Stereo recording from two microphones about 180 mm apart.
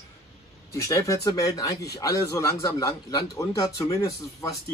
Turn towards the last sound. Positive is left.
turn(degrees=15)  # may be behind; listen again after turning